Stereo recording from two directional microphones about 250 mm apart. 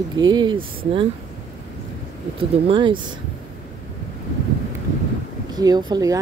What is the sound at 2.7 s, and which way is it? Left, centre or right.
Speech, centre.